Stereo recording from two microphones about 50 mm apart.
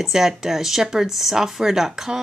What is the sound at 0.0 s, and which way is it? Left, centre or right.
Speech, centre.